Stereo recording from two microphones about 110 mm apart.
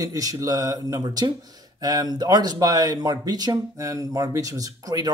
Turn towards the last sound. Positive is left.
turn(degrees=-35)  # may be behind; listen again after turning